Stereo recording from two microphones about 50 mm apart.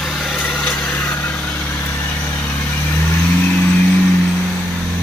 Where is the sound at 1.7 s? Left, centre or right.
Left.